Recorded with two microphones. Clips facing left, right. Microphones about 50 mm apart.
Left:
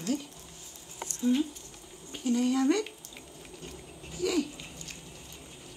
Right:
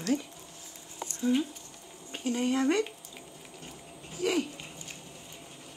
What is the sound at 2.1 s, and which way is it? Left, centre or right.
Speech, right.